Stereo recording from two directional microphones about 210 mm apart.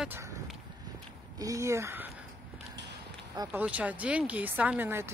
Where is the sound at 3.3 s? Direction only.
20° right (ahead or behind).